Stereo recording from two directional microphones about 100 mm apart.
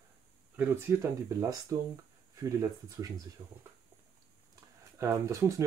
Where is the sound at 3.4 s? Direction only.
45° right (ahead or behind).